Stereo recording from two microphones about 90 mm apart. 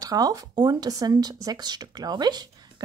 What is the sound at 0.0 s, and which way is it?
Speech, 45° right (ahead or behind).